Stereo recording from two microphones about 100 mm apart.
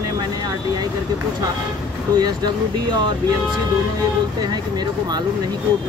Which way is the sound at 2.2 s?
45° right (ahead or behind).